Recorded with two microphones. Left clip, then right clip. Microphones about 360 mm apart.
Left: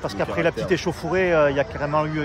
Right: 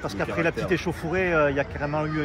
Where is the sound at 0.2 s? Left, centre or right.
Left.